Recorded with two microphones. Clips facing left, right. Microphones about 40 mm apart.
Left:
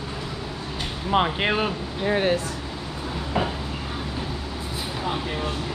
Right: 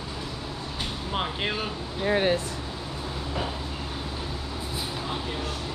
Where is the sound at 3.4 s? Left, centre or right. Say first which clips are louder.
Left 7 dB; left.